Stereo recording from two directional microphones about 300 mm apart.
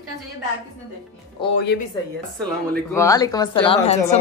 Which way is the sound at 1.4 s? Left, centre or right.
Centre.